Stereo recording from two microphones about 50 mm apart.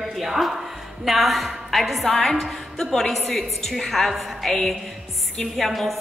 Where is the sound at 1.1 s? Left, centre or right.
Centre.